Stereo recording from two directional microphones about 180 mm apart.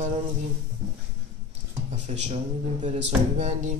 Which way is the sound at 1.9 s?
40° right (ahead or behind).